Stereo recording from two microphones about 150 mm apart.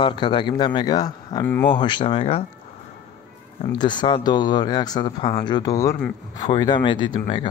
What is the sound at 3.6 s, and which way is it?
A man's voice, 30° left (ahead or behind).